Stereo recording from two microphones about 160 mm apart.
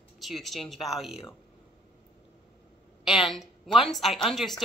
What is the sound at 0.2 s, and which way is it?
Speech, centre (ahead or behind).